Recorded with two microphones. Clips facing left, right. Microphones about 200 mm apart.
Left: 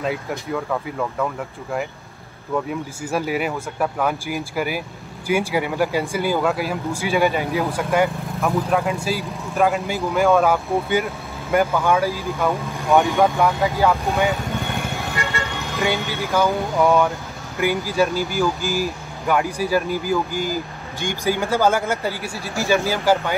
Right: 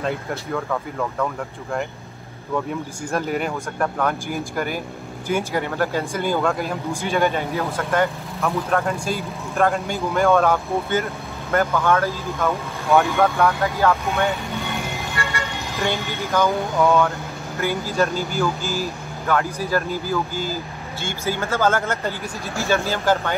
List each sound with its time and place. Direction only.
0.3 s speech: 5° left (ahead or behind)
3.1 s speech: 5° left (ahead or behind)
8.8 s speech: 5° left (ahead or behind)
15.2 s vehicle: 20° left (ahead or behind)
16.3 s speech: centre (ahead or behind)
16.7 s speech: 15° left (ahead or behind)